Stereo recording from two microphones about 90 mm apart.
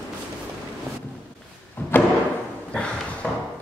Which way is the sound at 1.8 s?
20° left (ahead or behind).